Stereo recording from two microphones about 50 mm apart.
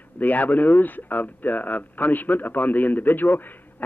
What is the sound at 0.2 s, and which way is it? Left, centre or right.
Speech, left.